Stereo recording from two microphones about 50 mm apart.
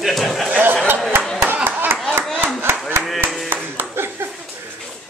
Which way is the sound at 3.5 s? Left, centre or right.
Right.